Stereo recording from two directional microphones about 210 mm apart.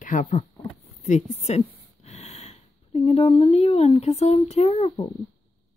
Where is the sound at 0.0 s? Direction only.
35° left (ahead or behind).